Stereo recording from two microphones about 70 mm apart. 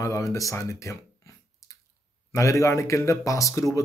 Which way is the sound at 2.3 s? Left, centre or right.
Left.